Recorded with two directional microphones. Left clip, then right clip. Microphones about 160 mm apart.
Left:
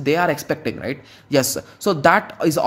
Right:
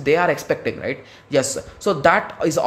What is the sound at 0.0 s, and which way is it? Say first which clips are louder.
Speech: right 1 dB; 30° left (ahead or behind).